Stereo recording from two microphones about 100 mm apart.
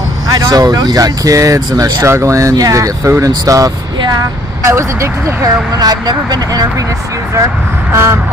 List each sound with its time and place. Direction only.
0.3 s speech: 40° right (ahead or behind)
5.8 s speech: 45° right (ahead or behind)
7.9 s vehicle: 25° right (ahead or behind)